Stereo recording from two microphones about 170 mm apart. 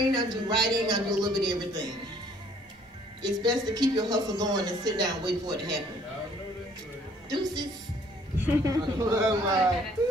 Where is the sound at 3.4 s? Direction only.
25° right (ahead or behind).